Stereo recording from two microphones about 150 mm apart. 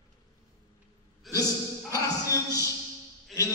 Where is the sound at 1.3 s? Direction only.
25° left (ahead or behind).